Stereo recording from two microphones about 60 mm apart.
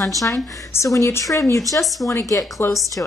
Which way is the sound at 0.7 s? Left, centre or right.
Left.